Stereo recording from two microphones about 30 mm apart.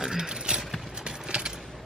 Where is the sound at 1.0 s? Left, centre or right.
Right.